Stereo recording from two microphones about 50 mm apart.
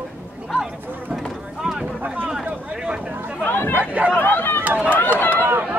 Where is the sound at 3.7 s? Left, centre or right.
Right.